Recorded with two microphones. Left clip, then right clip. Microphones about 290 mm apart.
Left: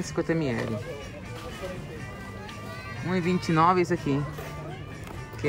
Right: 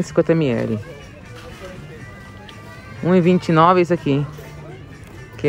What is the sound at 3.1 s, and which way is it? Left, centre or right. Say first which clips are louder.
Speech: right 12 dB; centre.